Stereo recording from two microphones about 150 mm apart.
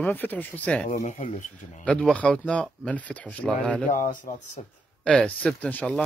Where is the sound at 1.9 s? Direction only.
5° left (ahead or behind).